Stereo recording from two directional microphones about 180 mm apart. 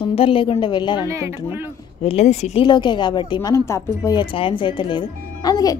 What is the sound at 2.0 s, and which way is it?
Speech, 35° left (ahead or behind).